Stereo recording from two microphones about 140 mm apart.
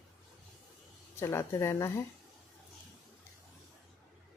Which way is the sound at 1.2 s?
20° left (ahead or behind).